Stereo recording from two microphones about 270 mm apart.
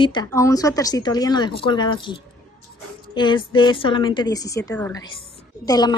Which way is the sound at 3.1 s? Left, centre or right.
Centre.